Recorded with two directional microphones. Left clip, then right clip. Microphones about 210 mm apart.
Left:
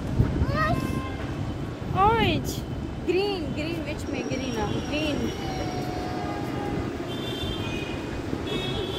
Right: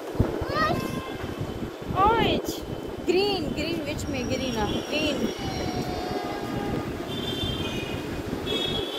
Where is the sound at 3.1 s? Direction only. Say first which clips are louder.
Right 2 dB; 45° right (ahead or behind).